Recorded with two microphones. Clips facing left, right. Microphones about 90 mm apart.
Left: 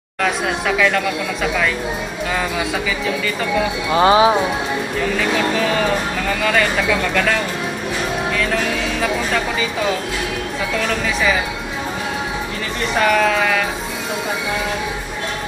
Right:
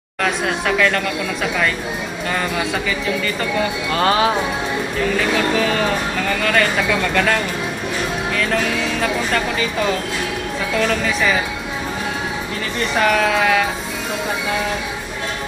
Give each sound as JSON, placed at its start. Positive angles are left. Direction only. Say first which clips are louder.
{"t": 0.2, "sound": "speech", "louder": "even", "side_deg": 5}
{"t": 3.9, "sound": "speech", "louder": "left 5 dB", "side_deg": 15}
{"t": 6.2, "sound": "speech", "louder": "right 1 dB", "side_deg": 5}
{"t": 9.0, "sound": "speech", "louder": "left 1 dB", "side_deg": 5}
{"t": 10.9, "sound": "speech", "louder": "even", "side_deg": 0}
{"t": 12.9, "sound": "speech", "louder": "left 1 dB", "side_deg": 0}